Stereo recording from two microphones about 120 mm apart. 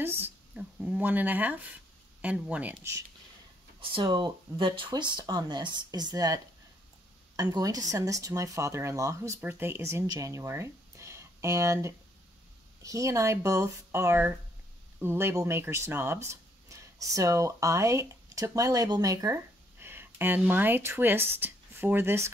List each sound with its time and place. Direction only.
0.0 s speech: 15° right (ahead or behind)
3.9 s speech: 40° right (ahead or behind); by 22.3 s 20° right (ahead or behind)